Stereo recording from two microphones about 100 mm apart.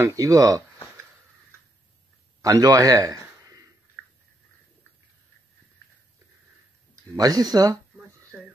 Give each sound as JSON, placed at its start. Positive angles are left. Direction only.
{"t": 0.0, "sound": "speech", "side_deg": -35}
{"t": 2.4, "sound": "speech", "side_deg": -35}
{"t": 7.2, "sound": "speech", "side_deg": -40}